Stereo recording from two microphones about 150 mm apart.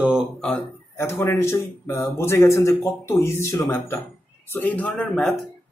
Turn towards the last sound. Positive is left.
turn(degrees=5)  # may be behind; listen again after turning